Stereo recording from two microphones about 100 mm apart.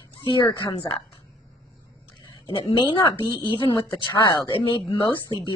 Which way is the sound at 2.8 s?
55° left (ahead or behind).